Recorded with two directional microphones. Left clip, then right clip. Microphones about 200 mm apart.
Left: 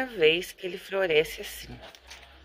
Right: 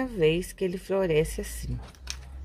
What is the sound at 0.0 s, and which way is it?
A woman's voice, 5° right (ahead or behind).